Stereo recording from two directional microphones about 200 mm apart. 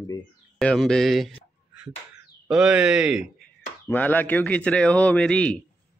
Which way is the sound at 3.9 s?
10° left (ahead or behind).